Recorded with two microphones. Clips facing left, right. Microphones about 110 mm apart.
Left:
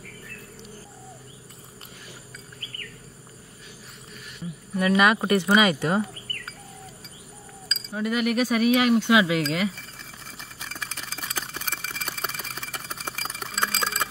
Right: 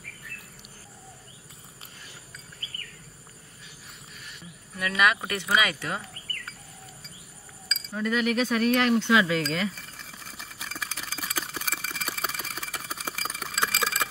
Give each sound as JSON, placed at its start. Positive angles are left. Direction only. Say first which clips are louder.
{"t": 4.7, "sound": "speech", "louder": "left 5 dB", "side_deg": 30}
{"t": 7.6, "sound": "speech", "louder": "left 1 dB", "side_deg": 5}
{"t": 9.4, "sound": "a sound", "louder": "left 3 dB", "side_deg": 5}